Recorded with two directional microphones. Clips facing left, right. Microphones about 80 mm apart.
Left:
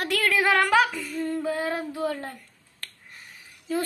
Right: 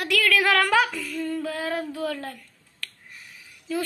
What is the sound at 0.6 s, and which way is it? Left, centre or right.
Speech, centre.